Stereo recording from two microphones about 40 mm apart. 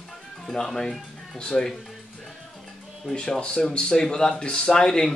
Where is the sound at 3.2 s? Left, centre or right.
Left.